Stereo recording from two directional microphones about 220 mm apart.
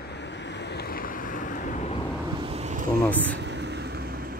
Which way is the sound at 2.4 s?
30° right (ahead or behind).